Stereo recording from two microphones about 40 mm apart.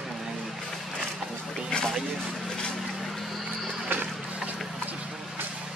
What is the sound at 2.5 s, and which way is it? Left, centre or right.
Vehicle, centre.